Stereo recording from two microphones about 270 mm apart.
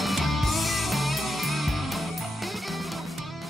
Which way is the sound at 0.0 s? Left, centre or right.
Centre.